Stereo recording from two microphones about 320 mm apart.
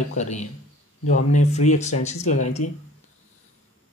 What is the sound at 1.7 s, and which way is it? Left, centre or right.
Speech, left.